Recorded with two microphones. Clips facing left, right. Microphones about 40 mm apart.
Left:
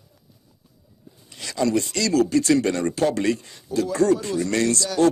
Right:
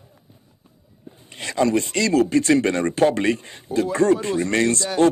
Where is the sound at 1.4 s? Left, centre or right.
Right.